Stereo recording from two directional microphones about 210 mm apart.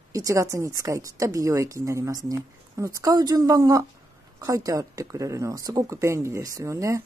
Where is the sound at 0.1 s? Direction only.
15° right (ahead or behind).